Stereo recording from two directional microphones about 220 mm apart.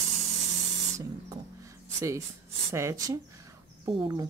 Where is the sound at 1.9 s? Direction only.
15° right (ahead or behind).